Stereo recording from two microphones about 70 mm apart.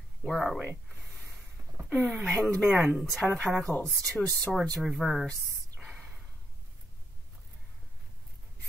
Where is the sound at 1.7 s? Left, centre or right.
Right.